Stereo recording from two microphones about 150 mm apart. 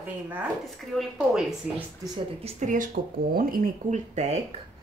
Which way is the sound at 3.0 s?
65° right (ahead or behind).